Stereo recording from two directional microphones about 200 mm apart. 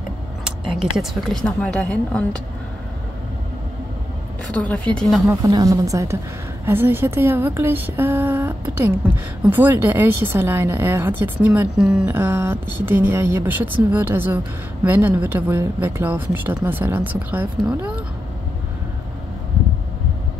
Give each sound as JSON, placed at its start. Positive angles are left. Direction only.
{"t": 0.7, "sound": "a woman's voice", "side_deg": 0}
{"t": 4.6, "sound": "a woman's voice", "side_deg": 5}
{"t": 5.3, "sound": "speech", "side_deg": -15}